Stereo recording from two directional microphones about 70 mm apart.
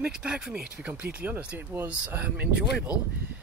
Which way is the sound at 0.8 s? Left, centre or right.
Right.